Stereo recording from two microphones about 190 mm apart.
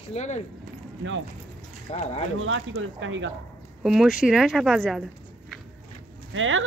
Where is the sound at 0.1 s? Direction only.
35° left (ahead or behind).